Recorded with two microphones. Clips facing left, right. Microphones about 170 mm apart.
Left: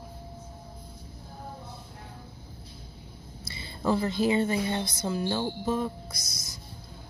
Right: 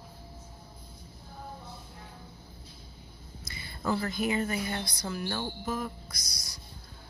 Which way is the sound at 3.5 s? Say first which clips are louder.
Left 4 dB; 30° left (ahead or behind).